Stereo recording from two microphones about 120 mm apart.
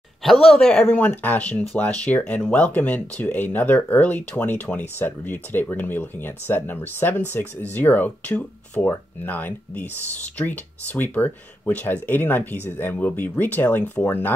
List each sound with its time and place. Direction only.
0.2 s speech: centre (ahead or behind); by 14.3 s 20° left (ahead or behind)